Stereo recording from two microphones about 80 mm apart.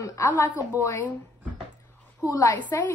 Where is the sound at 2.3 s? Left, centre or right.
Left.